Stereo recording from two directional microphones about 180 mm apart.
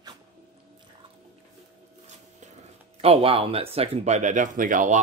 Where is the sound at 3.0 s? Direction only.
30° right (ahead or behind).